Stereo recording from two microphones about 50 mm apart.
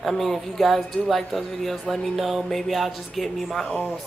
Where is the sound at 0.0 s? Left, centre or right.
Centre.